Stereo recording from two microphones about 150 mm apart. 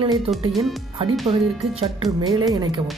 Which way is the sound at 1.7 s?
35° right (ahead or behind).